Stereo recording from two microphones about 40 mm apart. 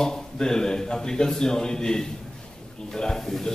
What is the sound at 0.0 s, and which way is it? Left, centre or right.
A man's voice, centre.